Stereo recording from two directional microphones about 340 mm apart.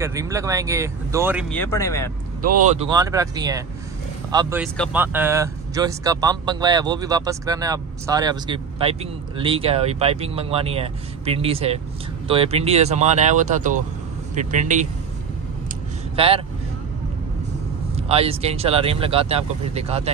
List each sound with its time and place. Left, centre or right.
0.0 s speech: centre
2.7 s speech: centre
16.2 s speech: centre
17.9 s speech: centre